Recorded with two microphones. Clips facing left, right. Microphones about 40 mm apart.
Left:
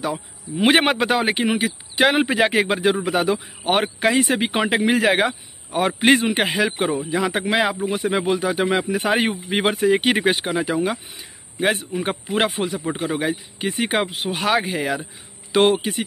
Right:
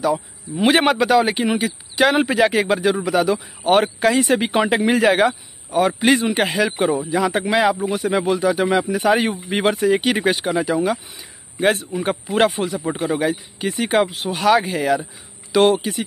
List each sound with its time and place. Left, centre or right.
0.1 s speech: centre
5.7 s speech: left
6.6 s speech: centre
8.9 s speech: left
9.3 s speech: centre
15.5 s speech: left